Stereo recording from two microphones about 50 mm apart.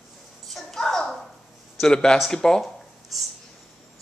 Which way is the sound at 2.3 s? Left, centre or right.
Centre.